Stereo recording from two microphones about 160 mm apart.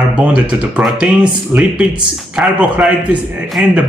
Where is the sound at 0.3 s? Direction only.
10° right (ahead or behind).